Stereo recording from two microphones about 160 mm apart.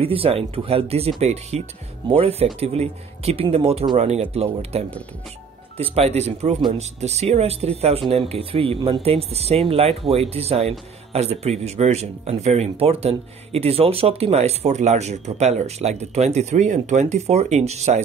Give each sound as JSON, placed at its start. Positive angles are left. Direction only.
{"t": 0.0, "sound": "speech", "side_deg": -35}
{"t": 5.8, "sound": "speech", "side_deg": -40}